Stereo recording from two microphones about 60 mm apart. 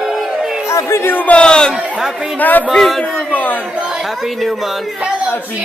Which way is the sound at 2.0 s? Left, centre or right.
Centre.